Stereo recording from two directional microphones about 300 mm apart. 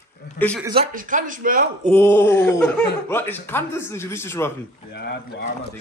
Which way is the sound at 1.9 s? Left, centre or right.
Centre.